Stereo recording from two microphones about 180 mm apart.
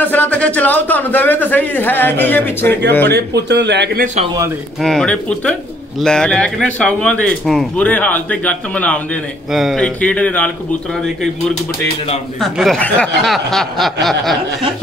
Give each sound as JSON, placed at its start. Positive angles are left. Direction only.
{"t": 0.0, "sound": "a man's voice", "side_deg": 10}
{"t": 3.2, "sound": "speech", "side_deg": -70}
{"t": 4.0, "sound": "speech", "side_deg": -40}
{"t": 4.8, "sound": "a man's voice", "side_deg": 5}
{"t": 12.4, "sound": "speech", "side_deg": 0}